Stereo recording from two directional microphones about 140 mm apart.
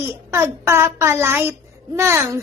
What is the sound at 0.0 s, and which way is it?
A woman's voice, 15° right (ahead or behind).